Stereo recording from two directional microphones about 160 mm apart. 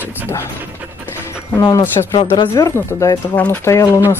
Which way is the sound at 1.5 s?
20° left (ahead or behind).